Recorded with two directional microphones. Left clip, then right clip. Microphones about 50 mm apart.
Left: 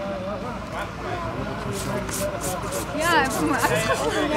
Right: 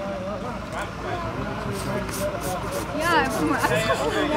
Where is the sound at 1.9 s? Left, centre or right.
Left.